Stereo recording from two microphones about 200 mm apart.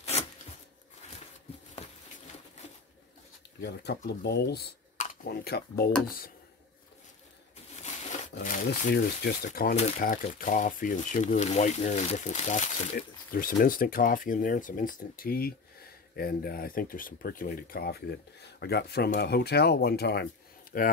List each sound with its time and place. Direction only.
3.6 s speech: 55° left (ahead or behind)
7.8 s speech: 35° left (ahead or behind)
9.8 s speech: 35° left (ahead or behind)